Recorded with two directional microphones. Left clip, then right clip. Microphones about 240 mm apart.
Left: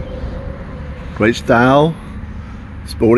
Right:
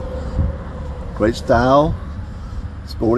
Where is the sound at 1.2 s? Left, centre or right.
Left.